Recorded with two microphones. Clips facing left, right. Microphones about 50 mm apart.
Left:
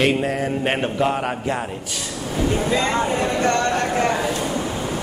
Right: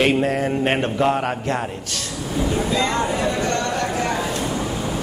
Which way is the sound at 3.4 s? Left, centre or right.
Left.